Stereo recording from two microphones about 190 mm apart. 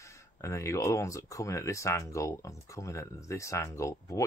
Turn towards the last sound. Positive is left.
turn(degrees=15)  # may be behind; listen again after turning